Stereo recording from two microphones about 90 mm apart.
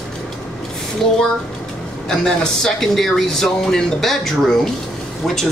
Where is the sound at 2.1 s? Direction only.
5° left (ahead or behind).